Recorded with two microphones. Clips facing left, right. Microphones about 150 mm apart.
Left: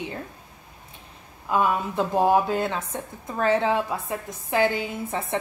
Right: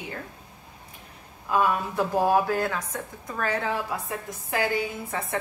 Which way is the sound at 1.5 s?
20° left (ahead or behind).